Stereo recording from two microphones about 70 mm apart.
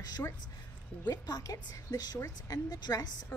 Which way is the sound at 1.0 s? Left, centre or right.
Left.